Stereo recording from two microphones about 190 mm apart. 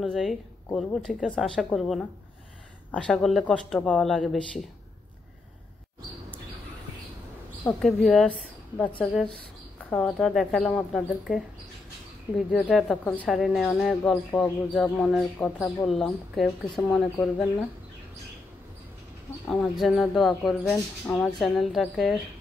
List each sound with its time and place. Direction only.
0.0 s speech: centre (ahead or behind)
7.6 s speech: 5° left (ahead or behind)
19.4 s speech: 5° left (ahead or behind)